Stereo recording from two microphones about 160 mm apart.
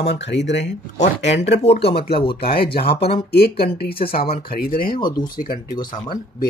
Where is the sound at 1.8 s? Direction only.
85° left.